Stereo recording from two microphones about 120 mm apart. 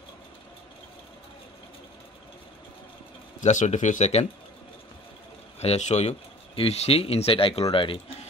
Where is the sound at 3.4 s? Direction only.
85° left; by 4.3 s 70° left (ahead or behind).